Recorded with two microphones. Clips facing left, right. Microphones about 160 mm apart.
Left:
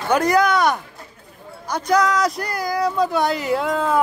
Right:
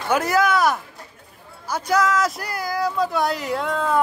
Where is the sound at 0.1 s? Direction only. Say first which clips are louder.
Left 2 dB; 5° right (ahead or behind).